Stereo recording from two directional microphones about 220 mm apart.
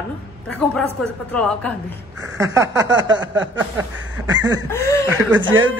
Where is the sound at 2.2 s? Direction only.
15° right (ahead or behind).